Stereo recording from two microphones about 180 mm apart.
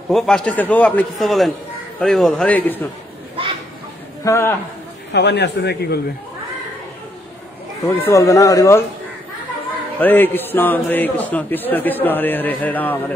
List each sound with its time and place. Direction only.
0.1 s a man's voice: 5° left (ahead or behind)
4.2 s a man's voice: 15° left (ahead or behind)
5.1 s a man's voice: 70° left (ahead or behind)
7.8 s a man's voice: 15° left (ahead or behind)
9.9 s a man's voice: 10° left (ahead or behind)